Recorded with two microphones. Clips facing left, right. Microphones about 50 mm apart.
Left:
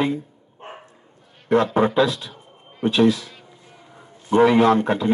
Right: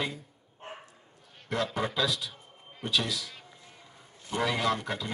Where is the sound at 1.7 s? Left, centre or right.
Left.